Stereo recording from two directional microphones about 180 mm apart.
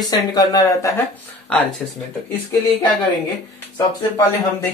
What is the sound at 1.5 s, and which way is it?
Speech, 5° left (ahead or behind).